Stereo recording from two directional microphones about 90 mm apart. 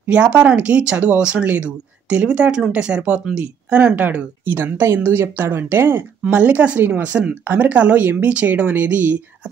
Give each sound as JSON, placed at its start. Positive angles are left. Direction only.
{"t": 0.0, "sound": "speech", "side_deg": -15}